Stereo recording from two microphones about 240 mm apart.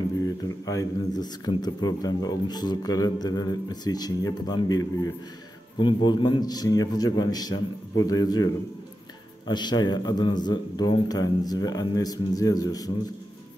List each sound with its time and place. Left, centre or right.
0.7 s speech: centre
9.5 s speech: centre